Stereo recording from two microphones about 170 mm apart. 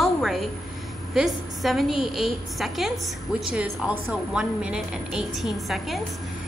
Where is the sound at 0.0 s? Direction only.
Centre (ahead or behind).